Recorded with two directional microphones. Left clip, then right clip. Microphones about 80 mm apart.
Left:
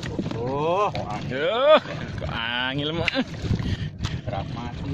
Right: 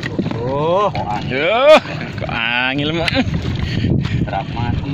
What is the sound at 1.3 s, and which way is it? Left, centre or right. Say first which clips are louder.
Speech: right 8 dB; centre.